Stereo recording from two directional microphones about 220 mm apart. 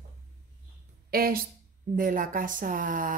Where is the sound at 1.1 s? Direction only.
40° right (ahead or behind).